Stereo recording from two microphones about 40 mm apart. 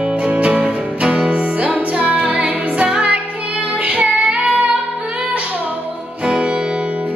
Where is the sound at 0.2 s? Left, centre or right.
Right.